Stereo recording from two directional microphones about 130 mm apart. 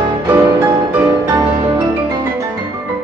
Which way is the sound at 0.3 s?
20° right (ahead or behind).